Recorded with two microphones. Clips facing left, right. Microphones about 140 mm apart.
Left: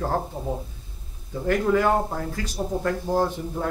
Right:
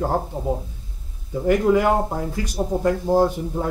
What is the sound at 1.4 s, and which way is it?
A man's voice, 15° right (ahead or behind).